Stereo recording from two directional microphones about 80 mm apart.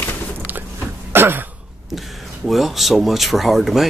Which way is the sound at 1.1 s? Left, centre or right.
Right.